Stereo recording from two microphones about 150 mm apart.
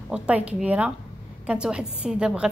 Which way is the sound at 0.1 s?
5° right (ahead or behind).